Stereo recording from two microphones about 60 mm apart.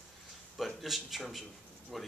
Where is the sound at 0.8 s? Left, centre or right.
Centre.